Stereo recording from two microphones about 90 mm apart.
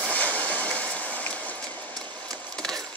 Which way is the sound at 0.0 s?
15° left (ahead or behind).